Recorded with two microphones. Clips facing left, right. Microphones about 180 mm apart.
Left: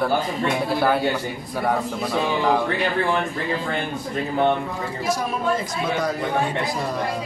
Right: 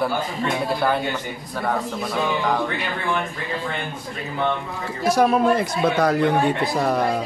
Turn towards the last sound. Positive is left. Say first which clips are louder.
# right 5 dB
turn(degrees=-65)  # may be behind; listen again after turning